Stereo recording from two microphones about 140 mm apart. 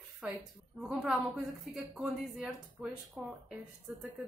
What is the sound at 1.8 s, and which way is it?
Speech, 5° right (ahead or behind).